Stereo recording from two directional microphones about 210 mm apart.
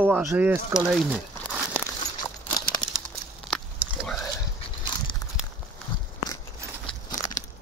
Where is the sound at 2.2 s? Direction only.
20° left (ahead or behind).